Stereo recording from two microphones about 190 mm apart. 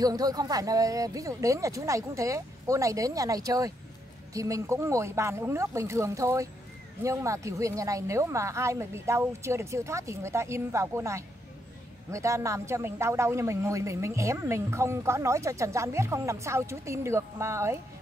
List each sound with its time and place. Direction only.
0.0 s a man's voice: 20° right (ahead or behind)